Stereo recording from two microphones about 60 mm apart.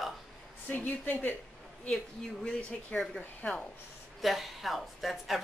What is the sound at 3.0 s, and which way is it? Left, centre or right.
Speech, centre.